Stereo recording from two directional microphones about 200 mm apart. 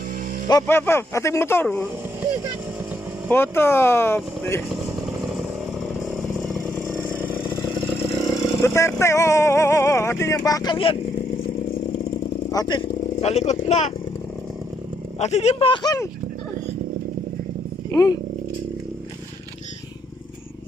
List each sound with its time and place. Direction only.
0.5 s speech: 15° left (ahead or behind)
3.3 s speech: 10° left (ahead or behind)
5.0 s chainsaw: centre (ahead or behind)
8.6 s speech: 15° left (ahead or behind)
12.4 s speech: 20° left (ahead or behind)
15.1 s speech: 35° left (ahead or behind); by 16.1 s 20° left (ahead or behind)
17.9 s speech: 20° left (ahead or behind)